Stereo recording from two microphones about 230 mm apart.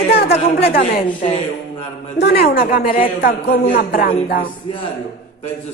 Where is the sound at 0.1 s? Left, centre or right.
Left.